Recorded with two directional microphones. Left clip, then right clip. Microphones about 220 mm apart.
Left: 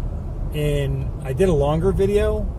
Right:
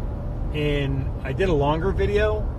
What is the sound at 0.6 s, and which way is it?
Speech, 15° left (ahead or behind).